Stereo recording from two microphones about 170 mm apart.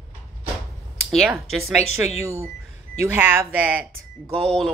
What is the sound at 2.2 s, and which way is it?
Speech, 15° right (ahead or behind).